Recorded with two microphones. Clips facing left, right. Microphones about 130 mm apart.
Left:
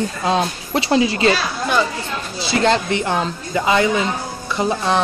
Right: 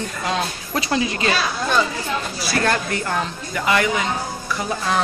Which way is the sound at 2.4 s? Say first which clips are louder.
Left 6 dB; 25° left (ahead or behind).